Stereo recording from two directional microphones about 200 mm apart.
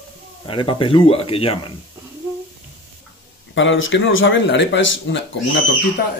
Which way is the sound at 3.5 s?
70° left (ahead or behind).